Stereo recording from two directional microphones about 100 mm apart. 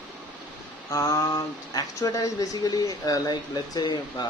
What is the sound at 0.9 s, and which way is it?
Speech, 35° left (ahead or behind).